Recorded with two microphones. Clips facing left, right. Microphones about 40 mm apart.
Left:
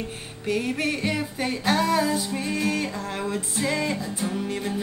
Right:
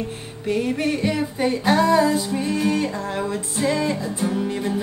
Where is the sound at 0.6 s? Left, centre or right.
Centre.